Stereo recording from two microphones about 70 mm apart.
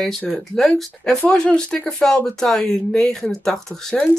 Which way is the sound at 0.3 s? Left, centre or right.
Centre.